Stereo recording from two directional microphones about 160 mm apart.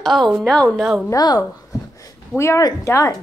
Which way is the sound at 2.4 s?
20° left (ahead or behind).